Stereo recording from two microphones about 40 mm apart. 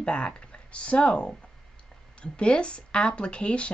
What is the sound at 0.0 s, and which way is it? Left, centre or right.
Speech, left.